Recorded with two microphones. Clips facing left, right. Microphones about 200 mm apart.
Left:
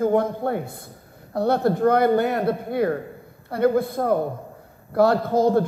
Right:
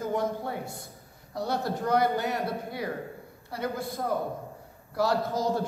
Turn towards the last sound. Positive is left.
turn(degrees=55)  # may be behind; listen again after turning